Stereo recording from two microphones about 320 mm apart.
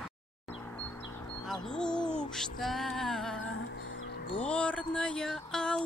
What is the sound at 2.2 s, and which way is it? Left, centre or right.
Music, centre.